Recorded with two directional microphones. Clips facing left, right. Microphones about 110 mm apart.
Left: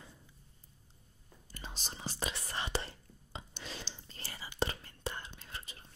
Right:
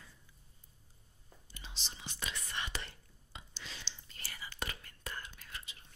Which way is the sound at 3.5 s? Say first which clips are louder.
Left 3 dB; 45° left (ahead or behind).